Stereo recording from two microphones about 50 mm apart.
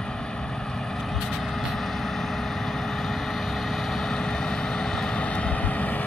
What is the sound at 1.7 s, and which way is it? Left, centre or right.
Vehicle, centre.